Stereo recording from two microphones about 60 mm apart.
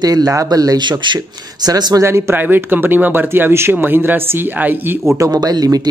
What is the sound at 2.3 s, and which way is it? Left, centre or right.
Speech, right.